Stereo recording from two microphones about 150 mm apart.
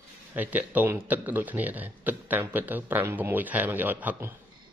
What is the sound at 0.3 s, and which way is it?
Speech, 10° right (ahead or behind).